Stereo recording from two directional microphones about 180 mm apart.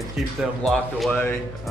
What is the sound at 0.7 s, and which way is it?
Speech, 5° left (ahead or behind).